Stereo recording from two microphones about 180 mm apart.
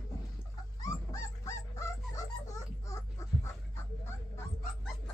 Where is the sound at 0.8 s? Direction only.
15° left (ahead or behind).